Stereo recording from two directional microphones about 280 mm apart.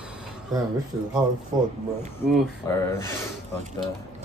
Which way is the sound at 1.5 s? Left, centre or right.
Centre.